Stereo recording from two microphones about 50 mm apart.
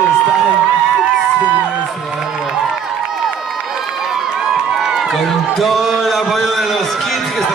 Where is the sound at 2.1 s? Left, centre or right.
Centre.